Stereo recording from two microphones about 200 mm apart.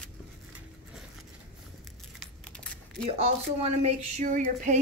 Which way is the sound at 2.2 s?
5° left (ahead or behind).